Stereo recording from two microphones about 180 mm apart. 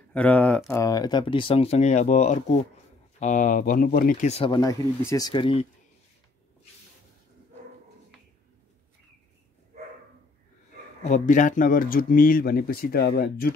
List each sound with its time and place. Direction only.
0.1 s speech: 5° left (ahead or behind)
0.7 s speech: 20° left (ahead or behind); by 4.3 s 50° left (ahead or behind)
4.3 s speech: 30° left (ahead or behind)
11.1 s speech: 45° left (ahead or behind)